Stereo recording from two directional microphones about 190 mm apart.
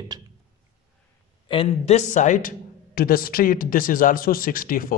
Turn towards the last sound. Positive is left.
turn(degrees=50)  # may be behind; listen again after turning